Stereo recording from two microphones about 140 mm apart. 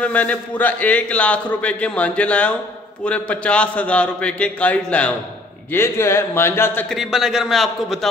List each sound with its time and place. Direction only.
0.0 s a man's voice: 10° left (ahead or behind)
6.9 s a man's voice: centre (ahead or behind)